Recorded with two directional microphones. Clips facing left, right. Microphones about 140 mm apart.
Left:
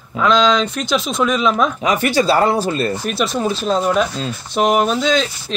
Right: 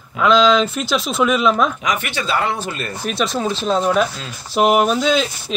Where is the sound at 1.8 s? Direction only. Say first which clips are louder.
Left 7 dB; 35° left (ahead or behind).